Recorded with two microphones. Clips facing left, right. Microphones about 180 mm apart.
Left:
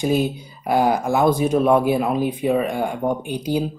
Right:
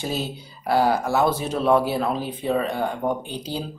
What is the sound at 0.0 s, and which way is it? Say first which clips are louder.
Speech: left 8 dB; 15° left (ahead or behind).